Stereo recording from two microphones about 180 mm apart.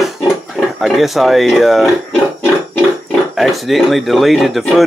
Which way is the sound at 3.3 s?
Centre (ahead or behind).